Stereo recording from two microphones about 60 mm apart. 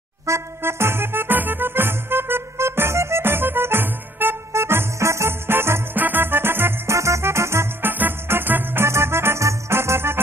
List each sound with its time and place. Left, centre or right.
0.3 s music: right
4.5 s music: right
7.0 s music: right
7.8 s music: right
8.8 s music: right